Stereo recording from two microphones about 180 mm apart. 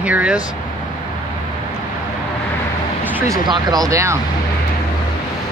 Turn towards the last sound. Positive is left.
turn(degrees=-15)  # may be behind; listen again after turning